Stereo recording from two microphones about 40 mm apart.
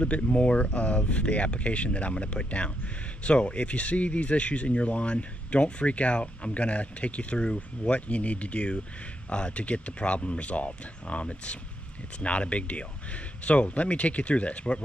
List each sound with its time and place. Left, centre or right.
0.0 s speech: left